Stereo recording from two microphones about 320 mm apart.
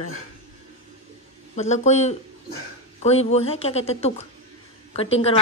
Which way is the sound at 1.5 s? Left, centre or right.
Left.